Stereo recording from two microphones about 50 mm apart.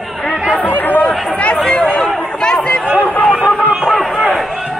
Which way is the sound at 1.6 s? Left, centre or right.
Left.